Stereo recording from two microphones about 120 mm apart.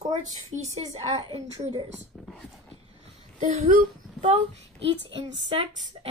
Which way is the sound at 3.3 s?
90° right.